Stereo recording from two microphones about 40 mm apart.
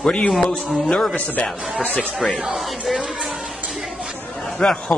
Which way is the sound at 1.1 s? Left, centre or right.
Left.